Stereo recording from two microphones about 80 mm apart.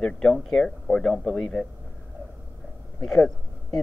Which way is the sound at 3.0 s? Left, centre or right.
Centre.